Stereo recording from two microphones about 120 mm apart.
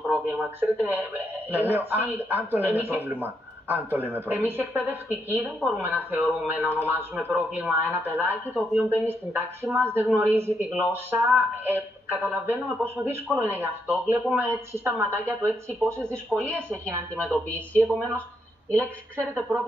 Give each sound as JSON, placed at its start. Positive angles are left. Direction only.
{"t": 0.3, "sound": "a woman's voice", "side_deg": -15}
{"t": 17.2, "sound": "speech", "side_deg": 10}